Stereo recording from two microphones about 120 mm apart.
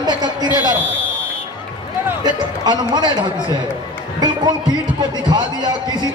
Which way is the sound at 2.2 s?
35° right (ahead or behind).